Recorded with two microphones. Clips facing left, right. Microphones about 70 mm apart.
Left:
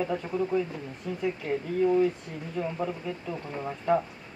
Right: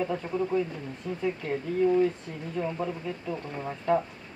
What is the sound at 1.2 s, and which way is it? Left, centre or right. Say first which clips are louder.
Speech: even; centre.